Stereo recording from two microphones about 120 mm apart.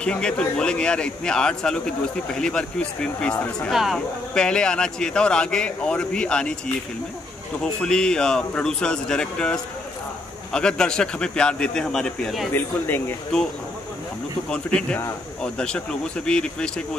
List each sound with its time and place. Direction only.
0.0 s speech: 10° left (ahead or behind)
7.6 s speech: 5° left (ahead or behind)
12.5 s speech: 15° left (ahead or behind)
13.3 s speech: 5° left (ahead or behind)
14.5 s speech: 10° left (ahead or behind)